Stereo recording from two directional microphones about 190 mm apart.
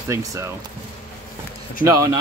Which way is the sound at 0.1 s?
15° right (ahead or behind).